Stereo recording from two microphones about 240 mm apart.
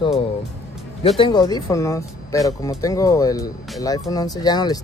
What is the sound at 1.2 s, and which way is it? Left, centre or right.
Speech, centre.